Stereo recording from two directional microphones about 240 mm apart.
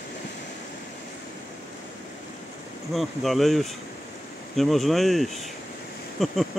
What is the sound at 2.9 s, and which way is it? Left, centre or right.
Speech, centre.